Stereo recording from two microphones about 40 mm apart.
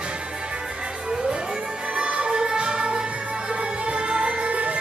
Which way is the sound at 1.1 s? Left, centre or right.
Right.